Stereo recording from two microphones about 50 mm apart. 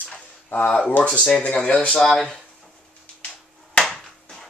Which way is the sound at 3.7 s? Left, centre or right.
Centre.